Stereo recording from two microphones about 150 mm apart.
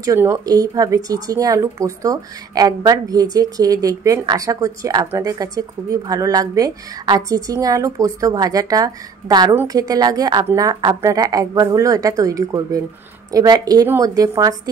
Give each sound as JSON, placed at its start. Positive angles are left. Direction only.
{"t": 0.0, "sound": "speech", "side_deg": -20}